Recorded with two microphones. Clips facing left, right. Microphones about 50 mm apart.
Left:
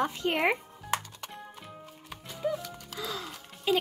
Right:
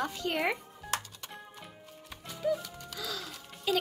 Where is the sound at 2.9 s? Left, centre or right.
Left.